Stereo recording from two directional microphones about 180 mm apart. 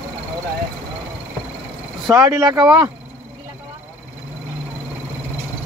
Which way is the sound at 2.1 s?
20° right (ahead or behind).